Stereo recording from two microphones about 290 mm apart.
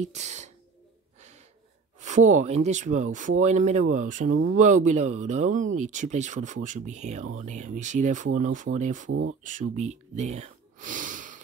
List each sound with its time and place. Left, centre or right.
0.0 s speech: right
2.0 s speech: right
9.1 s speech: right
9.4 s speech: right